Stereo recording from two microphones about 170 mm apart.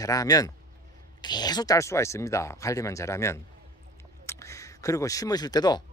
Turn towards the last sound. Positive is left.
turn(degrees=25)  # may be behind; listen again after turning